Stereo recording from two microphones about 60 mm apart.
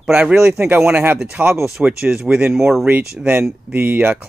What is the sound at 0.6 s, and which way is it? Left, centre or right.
Speech, right.